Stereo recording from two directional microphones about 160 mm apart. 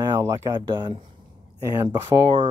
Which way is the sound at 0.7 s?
30° right (ahead or behind).